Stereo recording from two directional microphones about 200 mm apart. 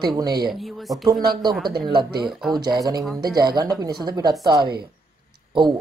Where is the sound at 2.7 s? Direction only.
20° right (ahead or behind).